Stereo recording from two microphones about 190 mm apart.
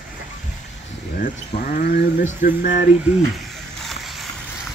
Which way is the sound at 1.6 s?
45° left (ahead or behind).